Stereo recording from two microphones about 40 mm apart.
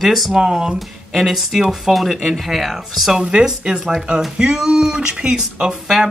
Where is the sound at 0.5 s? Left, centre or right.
Centre.